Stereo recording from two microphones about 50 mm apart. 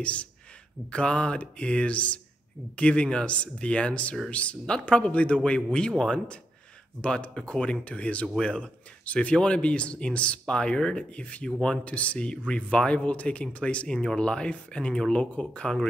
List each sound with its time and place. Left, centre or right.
0.0 s speech: left